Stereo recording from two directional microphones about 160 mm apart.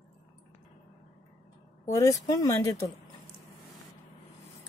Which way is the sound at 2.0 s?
20° left (ahead or behind).